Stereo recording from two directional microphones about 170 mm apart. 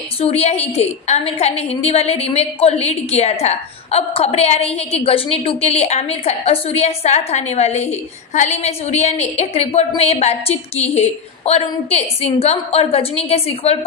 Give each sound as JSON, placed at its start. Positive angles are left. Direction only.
{"t": 0.2, "sound": "a woman's voice", "side_deg": 40}